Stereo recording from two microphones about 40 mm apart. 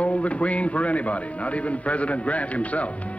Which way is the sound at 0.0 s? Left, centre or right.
Left.